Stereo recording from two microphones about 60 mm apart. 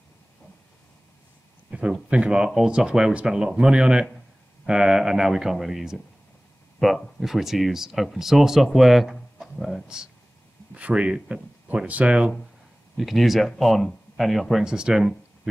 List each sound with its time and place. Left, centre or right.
1.7 s speech: centre
9.4 s music: centre
10.7 s speech: right
12.9 s speech: centre
14.6 s speech: centre